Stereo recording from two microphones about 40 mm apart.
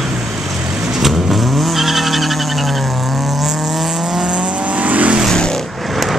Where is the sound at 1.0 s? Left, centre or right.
Centre.